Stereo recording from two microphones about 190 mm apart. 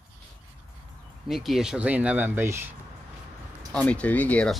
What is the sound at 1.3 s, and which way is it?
Speech, centre (ahead or behind).